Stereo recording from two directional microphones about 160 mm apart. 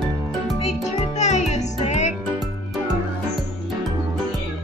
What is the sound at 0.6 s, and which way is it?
Music, 40° left (ahead or behind).